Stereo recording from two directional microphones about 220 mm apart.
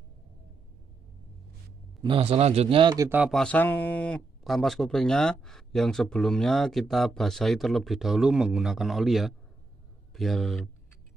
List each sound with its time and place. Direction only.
2.0 s a man's voice: 25° right (ahead or behind)
3.3 s speech: 5° left (ahead or behind)